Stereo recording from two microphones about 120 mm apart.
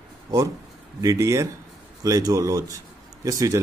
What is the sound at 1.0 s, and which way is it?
A man's voice, 25° right (ahead or behind).